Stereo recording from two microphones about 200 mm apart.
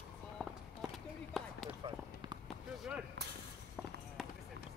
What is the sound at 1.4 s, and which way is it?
Run, centre (ahead or behind).